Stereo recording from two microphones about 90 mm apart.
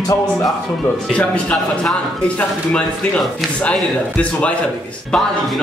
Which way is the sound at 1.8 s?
10° left (ahead or behind).